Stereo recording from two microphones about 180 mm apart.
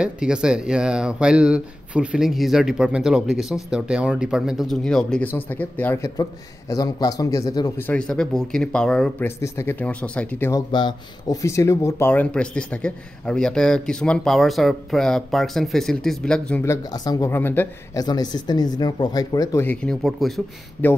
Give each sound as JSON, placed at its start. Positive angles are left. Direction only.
{"t": 0.0, "sound": "speech", "side_deg": -5}
{"t": 10.5, "sound": "speech", "side_deg": 25}
{"t": 18.0, "sound": "speech", "side_deg": 20}